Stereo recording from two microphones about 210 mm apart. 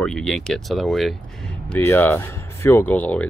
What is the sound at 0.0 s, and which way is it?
Speech, centre (ahead or behind).